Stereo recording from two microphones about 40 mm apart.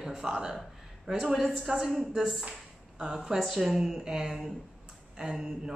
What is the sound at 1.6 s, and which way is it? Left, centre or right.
Speech, centre.